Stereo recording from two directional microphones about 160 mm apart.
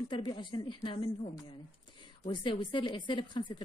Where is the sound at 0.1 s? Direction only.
30° left (ahead or behind).